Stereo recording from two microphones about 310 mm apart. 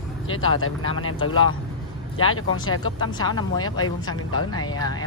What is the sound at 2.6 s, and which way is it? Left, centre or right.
Speech, left.